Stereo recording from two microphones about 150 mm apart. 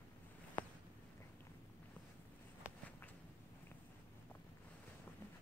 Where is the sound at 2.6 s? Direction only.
10° right (ahead or behind).